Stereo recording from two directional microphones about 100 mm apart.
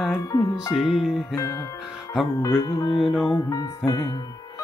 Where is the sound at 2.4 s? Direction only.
30° left (ahead or behind).